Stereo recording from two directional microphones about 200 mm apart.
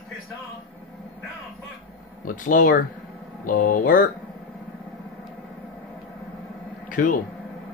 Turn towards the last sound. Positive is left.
turn(degrees=40)  # may be behind; listen again after turning